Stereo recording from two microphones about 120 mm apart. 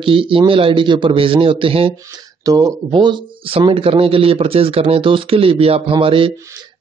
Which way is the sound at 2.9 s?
40° right (ahead or behind).